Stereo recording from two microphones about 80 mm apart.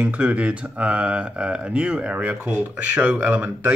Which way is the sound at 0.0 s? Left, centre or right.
Centre.